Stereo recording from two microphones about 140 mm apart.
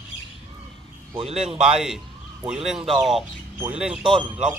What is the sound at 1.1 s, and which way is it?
Speech, 45° right (ahead or behind).